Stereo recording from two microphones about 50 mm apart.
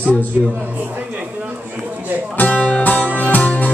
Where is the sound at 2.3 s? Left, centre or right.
Left.